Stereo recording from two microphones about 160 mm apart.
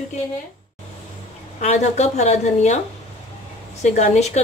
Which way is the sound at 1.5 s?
45° left (ahead or behind).